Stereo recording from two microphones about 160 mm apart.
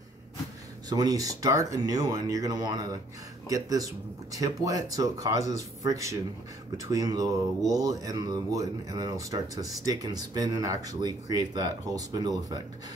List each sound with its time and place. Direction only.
0.8 s speech: 20° right (ahead or behind)